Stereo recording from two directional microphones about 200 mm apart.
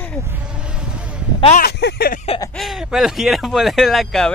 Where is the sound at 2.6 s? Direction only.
Centre (ahead or behind).